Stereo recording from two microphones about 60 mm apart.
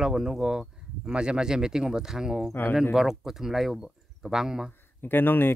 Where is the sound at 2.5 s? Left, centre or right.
Left.